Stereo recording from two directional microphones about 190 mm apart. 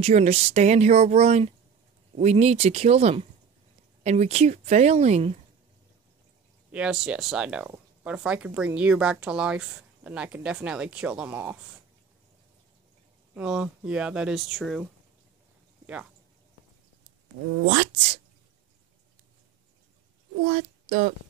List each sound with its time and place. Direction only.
0.0 s speech: 35° right (ahead or behind)
6.7 s speech: 5° right (ahead or behind)
13.3 s speech: 5° right (ahead or behind)
20.4 s speech: 35° right (ahead or behind)